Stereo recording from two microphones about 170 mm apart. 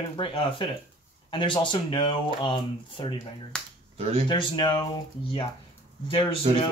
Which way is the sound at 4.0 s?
35° right (ahead or behind).